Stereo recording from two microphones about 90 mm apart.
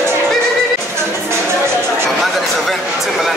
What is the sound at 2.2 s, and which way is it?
Speech, centre (ahead or behind).